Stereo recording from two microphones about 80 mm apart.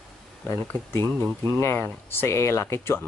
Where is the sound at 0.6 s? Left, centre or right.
Left.